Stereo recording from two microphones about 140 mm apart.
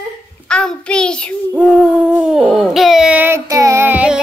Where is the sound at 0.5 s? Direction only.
5° left (ahead or behind).